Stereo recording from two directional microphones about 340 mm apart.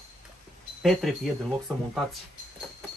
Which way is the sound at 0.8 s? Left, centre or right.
Centre.